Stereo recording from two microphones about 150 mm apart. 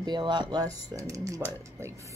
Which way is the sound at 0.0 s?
30° right (ahead or behind).